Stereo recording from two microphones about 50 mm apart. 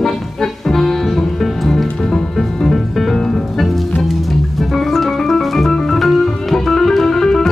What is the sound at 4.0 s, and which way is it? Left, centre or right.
Organ, centre.